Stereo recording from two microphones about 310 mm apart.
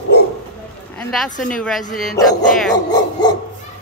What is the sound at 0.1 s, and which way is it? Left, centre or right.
Bow-wow, left.